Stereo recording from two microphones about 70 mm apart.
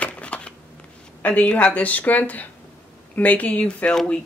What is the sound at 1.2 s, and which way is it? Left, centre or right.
Speech, left.